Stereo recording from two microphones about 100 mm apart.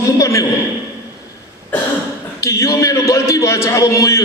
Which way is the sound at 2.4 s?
30° left (ahead or behind).